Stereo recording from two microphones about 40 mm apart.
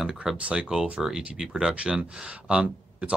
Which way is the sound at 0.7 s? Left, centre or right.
Centre.